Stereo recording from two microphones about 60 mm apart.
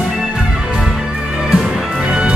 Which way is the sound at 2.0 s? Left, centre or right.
Centre.